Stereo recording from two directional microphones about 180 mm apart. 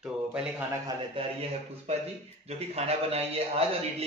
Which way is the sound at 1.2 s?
35° right (ahead or behind).